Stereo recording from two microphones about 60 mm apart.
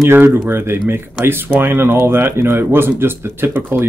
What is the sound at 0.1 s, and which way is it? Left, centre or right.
Speech, right.